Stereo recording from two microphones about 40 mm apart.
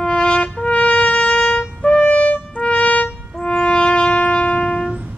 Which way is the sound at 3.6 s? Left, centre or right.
Left.